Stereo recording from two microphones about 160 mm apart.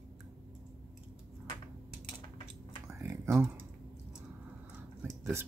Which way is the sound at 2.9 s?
15° right (ahead or behind).